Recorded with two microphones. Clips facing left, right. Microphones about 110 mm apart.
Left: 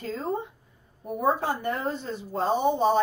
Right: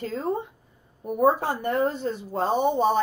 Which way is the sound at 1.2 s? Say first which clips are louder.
Right 4 dB; 55° right (ahead or behind).